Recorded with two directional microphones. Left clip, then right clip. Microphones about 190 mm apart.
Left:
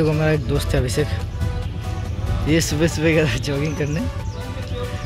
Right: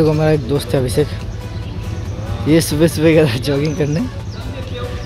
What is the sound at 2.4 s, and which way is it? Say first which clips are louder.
Speech: right 6 dB; 10° right (ahead or behind).